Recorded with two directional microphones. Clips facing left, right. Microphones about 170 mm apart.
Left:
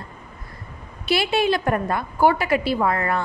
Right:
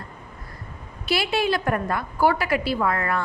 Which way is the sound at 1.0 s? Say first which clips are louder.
Left 3 dB; 25° left (ahead or behind).